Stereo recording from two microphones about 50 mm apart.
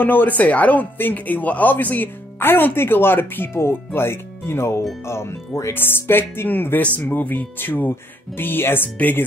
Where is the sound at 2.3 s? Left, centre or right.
Left.